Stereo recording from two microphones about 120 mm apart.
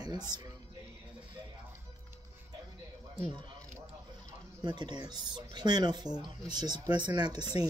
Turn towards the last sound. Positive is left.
turn(degrees=-35)  # may be behind; listen again after turning